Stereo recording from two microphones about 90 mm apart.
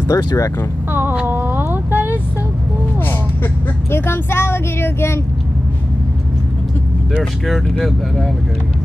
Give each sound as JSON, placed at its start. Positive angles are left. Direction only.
{"t": 0.1, "sound": "speech", "side_deg": 55}
{"t": 1.1, "sound": "a sound", "side_deg": -20}
{"t": 3.9, "sound": "speech", "side_deg": 25}
{"t": 7.2, "sound": "speech", "side_deg": 0}